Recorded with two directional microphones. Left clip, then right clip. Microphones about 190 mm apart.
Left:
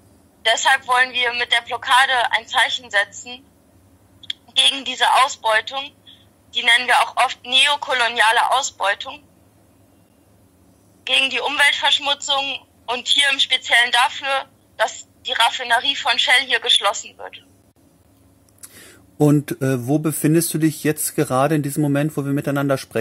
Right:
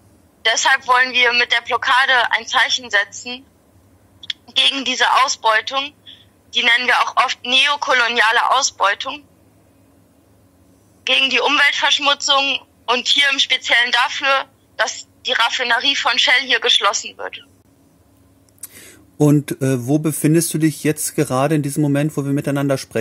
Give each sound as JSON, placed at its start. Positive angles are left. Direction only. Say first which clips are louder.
{"t": 0.4, "sound": "a woman's voice", "louder": "right 1 dB", "side_deg": -40}
{"t": 4.2, "sound": "a woman's voice", "louder": "right 1 dB", "side_deg": -40}
{"t": 11.1, "sound": "a woman's voice", "louder": "right 4 dB", "side_deg": -40}
{"t": 18.6, "sound": "speech", "louder": "right 3 dB", "side_deg": -10}